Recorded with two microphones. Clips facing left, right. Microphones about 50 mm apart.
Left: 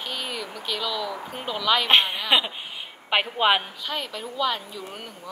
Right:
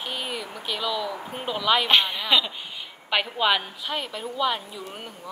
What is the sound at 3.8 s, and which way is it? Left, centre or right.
Speech, centre.